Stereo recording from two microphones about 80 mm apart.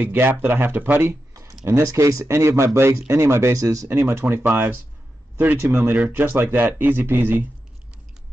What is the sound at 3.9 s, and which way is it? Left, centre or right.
Speech, right.